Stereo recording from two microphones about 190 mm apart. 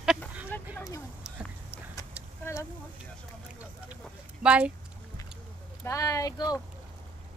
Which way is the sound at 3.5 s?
5° right (ahead or behind).